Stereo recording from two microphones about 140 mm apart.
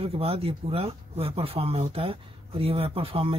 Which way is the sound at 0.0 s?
45° right (ahead or behind).